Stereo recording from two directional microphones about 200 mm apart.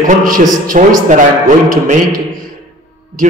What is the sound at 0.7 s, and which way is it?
Speech, 40° right (ahead or behind).